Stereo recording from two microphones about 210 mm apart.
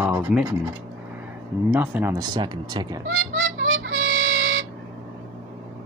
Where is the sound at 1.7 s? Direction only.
10° right (ahead or behind).